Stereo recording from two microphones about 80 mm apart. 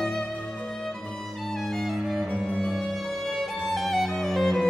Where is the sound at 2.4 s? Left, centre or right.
Centre.